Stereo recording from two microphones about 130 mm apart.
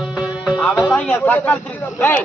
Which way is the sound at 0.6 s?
10° left (ahead or behind).